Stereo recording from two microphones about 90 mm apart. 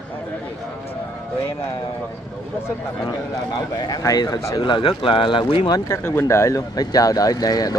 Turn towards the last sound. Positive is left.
turn(degrees=45)  # may be behind; listen again after turning